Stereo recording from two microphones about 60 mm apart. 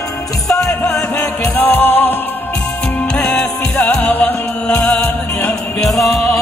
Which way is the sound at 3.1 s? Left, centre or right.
Centre.